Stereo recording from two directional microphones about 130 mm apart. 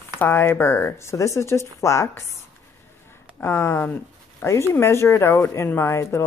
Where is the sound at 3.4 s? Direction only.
20° left (ahead or behind).